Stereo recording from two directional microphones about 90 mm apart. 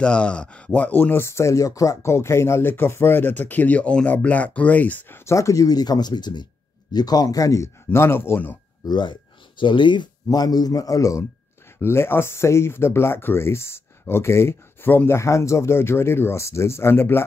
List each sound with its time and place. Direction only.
0.0 s speech: 10° left (ahead or behind)
5.2 s speech: 35° left (ahead or behind)
8.8 s speech: 60° left (ahead or behind)
10.2 s speech: 45° left (ahead or behind)
11.8 s speech: 25° left (ahead or behind)